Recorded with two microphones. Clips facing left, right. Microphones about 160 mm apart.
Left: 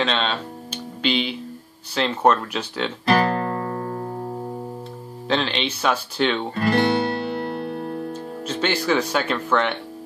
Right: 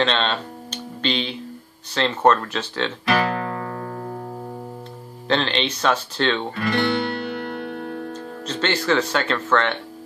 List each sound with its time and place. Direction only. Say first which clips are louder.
0.0 s speech: right 2 dB; 5° left (ahead or behind)
3.1 s music: left 3 dB; 40° left (ahead or behind)
5.3 s speech: right 1 dB; 5° left (ahead or behind)
6.5 s music: left 2 dB; 40° left (ahead or behind)
8.1 s speech: left 1 dB; 10° left (ahead or behind)